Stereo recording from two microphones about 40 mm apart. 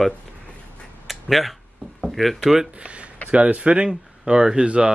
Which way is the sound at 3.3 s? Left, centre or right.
Right.